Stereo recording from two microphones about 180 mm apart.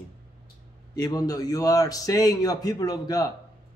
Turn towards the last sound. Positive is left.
turn(degrees=20)  # may be behind; listen again after turning